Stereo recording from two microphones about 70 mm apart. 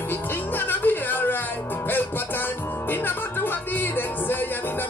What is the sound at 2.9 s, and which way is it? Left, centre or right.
Music, left.